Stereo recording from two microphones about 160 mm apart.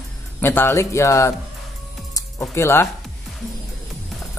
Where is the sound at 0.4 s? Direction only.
15° left (ahead or behind).